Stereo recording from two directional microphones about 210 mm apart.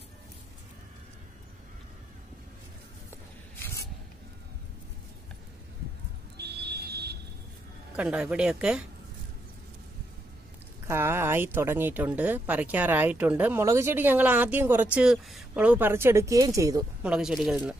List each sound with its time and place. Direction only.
3.5 s a sound: 10° left (ahead or behind)
6.3 s vehicle: 50° right (ahead or behind)
7.9 s speech: 5° right (ahead or behind)
10.9 s speech: 10° right (ahead or behind)
17.1 s speech: centre (ahead or behind)